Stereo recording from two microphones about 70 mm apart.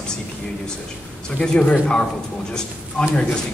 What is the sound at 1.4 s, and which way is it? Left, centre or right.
Speech, centre.